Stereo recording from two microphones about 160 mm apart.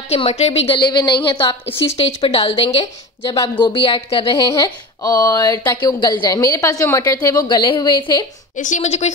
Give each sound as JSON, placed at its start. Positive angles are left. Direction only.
{"t": 0.1, "sound": "a woman's voice", "side_deg": 40}
{"t": 2.0, "sound": "a woman's voice", "side_deg": 40}
{"t": 8.5, "sound": "a woman's voice", "side_deg": 50}